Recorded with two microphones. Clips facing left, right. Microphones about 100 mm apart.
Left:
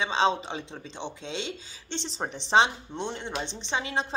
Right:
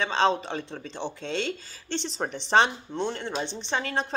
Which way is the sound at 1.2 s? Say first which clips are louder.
Right 5 dB; 50° right (ahead or behind).